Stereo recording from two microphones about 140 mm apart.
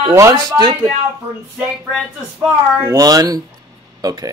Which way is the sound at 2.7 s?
25° right (ahead or behind).